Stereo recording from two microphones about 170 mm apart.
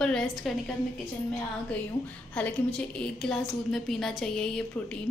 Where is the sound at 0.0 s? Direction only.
5° left (ahead or behind).